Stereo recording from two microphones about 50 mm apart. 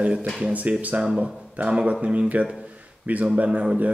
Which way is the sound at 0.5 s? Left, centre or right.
Right.